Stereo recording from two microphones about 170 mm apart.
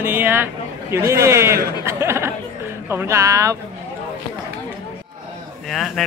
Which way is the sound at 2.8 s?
15° right (ahead or behind).